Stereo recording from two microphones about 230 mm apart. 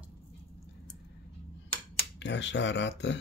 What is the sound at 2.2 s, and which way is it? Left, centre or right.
Speech, left.